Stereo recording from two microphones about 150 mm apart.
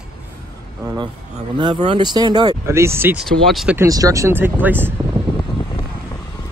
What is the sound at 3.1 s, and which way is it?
Speech, centre (ahead or behind).